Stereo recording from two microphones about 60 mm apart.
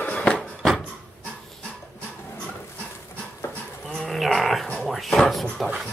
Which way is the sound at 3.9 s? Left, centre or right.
Centre.